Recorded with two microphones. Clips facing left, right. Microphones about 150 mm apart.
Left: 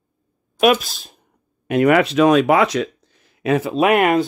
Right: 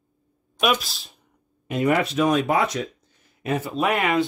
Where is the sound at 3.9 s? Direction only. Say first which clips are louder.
Left 6 dB; 50° left (ahead or behind).